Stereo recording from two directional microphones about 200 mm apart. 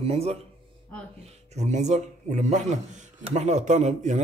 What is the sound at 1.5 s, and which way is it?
A man's voice, 35° right (ahead or behind).